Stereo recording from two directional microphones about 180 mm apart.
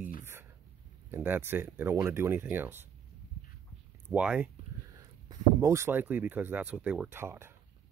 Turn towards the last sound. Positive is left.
turn(degrees=-15)  # may be behind; listen again after turning